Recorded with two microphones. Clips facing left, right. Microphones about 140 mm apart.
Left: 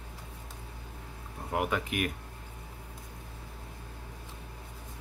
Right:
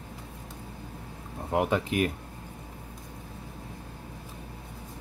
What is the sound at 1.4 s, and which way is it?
Speech, 25° right (ahead or behind).